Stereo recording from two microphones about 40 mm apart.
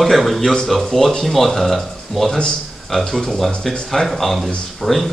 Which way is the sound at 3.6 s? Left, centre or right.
Centre.